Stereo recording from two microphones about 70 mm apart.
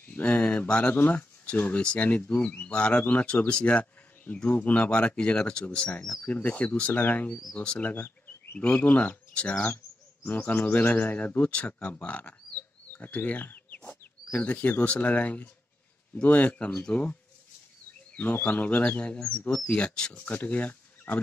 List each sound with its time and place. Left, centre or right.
0.0 s speech: left